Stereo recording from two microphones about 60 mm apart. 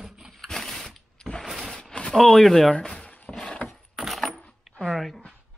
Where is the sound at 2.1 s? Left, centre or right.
Centre.